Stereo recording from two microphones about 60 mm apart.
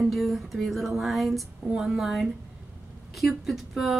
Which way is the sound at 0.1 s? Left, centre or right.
Centre.